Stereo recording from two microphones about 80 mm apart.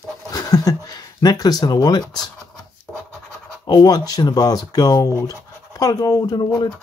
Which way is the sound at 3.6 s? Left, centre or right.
Left.